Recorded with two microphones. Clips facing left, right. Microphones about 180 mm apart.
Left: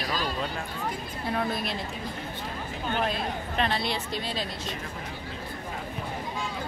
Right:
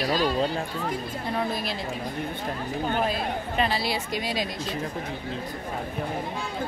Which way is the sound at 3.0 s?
5° right (ahead or behind).